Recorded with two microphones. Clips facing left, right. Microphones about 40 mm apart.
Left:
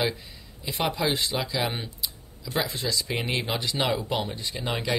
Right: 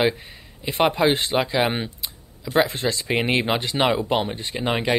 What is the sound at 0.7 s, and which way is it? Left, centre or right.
Speech, right.